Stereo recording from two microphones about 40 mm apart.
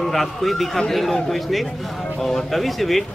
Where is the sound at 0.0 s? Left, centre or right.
Centre.